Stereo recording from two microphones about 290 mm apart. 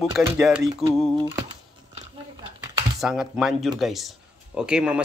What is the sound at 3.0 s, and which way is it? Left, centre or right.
Speech, centre.